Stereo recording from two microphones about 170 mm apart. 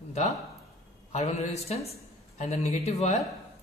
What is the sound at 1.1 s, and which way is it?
A man's voice, 40° left (ahead or behind).